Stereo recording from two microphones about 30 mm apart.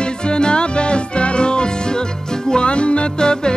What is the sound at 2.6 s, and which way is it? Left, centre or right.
Music, left.